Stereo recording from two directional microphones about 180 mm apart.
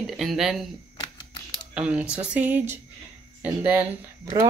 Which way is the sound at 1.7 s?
5° right (ahead or behind).